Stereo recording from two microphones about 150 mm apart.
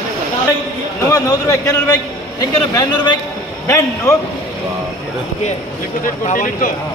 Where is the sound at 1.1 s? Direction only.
20° left (ahead or behind).